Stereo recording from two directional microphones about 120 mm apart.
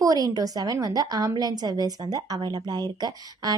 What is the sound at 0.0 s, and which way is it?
A woman's voice, 30° right (ahead or behind).